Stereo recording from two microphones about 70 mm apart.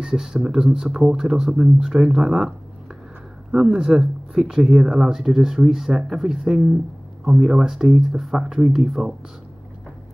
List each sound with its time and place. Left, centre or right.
0.0 s speech: centre
3.5 s speech: centre